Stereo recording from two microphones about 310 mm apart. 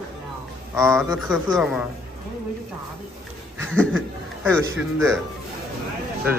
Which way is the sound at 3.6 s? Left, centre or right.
Centre.